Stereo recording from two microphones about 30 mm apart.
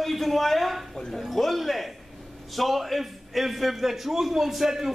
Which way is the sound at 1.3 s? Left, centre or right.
Centre.